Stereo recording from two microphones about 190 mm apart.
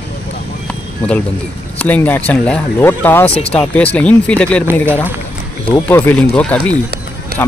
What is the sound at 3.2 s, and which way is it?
Speech, 30° left (ahead or behind).